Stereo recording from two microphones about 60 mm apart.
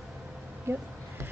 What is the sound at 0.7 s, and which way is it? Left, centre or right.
Speech, right.